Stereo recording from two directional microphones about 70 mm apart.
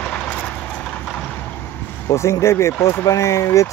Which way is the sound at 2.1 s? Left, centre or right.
Left.